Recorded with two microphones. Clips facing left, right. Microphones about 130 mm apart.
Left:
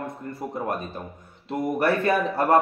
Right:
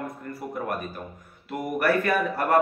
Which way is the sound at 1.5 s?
25° left (ahead or behind).